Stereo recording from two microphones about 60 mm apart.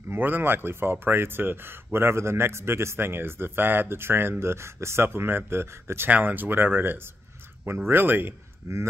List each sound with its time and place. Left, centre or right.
0.1 s speech: right
6.0 s speech: right
7.6 s speech: right
8.6 s speech: right